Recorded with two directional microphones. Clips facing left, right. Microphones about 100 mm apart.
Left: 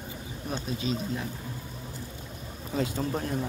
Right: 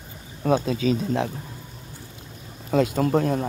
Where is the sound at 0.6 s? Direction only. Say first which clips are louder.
Right 8 dB; 75° right (ahead or behind).